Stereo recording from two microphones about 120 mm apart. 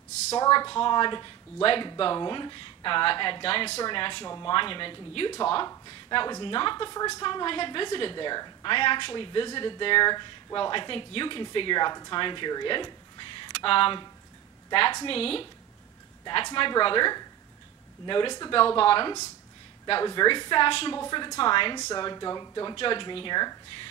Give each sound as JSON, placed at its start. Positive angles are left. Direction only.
{"t": 0.4, "sound": "a woman's voice", "side_deg": 35}
{"t": 22.8, "sound": "speech", "side_deg": 45}